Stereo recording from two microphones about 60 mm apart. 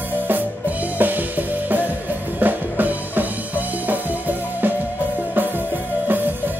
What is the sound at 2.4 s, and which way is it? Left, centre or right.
Music, right.